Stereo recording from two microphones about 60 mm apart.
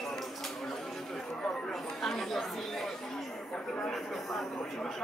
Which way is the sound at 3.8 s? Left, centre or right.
Centre.